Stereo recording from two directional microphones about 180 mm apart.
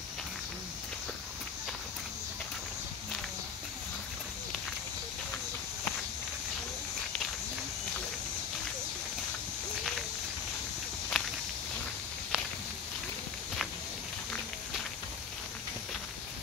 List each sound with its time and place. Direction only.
11.1 s walk: centre (ahead or behind)